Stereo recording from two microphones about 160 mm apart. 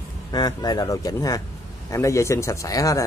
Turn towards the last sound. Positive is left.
turn(degrees=20)  # may be behind; listen again after turning